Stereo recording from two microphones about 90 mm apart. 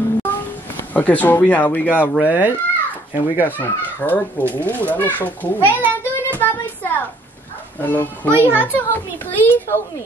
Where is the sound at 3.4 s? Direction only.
20° left (ahead or behind).